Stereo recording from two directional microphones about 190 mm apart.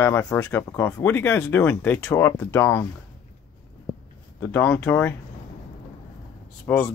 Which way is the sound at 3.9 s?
20° right (ahead or behind).